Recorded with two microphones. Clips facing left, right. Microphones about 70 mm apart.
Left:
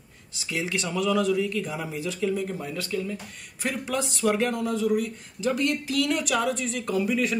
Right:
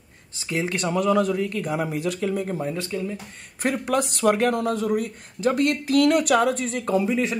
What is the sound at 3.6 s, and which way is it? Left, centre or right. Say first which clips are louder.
Speech: right 5 dB; right.